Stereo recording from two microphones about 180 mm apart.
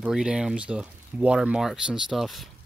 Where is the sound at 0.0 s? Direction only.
5° right (ahead or behind).